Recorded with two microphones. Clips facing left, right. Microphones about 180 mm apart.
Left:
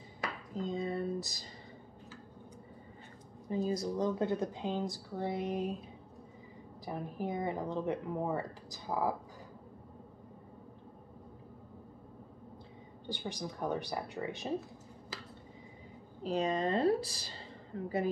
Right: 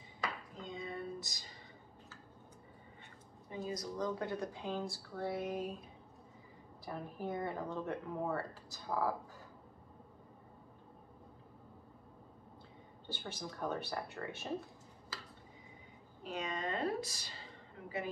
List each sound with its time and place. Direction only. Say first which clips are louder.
0.6 s a sound: left 11 dB; 35° left (ahead or behind)
3.4 s speech: left 8 dB; 35° left (ahead or behind)
6.9 s speech: left 3 dB; 15° left (ahead or behind)
13.1 s speech: left 5 dB; 15° left (ahead or behind)
16.3 s speech: left 8 dB; 35° left (ahead or behind)